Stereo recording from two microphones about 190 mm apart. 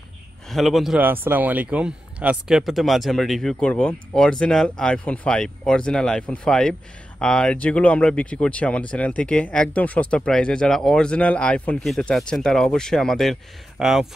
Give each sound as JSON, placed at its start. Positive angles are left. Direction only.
{"t": 0.5, "sound": "speech", "side_deg": 0}